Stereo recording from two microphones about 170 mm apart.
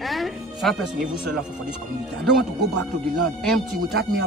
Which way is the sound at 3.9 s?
70° right (ahead or behind).